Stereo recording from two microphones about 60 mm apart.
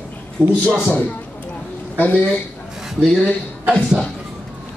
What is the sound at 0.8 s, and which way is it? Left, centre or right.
Speech, left.